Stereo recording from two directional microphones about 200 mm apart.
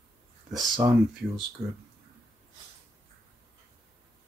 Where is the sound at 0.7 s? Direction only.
25° right (ahead or behind).